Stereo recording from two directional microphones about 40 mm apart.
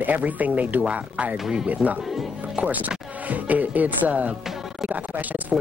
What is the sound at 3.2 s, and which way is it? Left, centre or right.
A man's voice, right.